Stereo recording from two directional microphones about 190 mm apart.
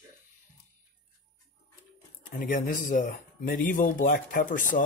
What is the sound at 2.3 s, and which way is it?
Speech, 45° left (ahead or behind).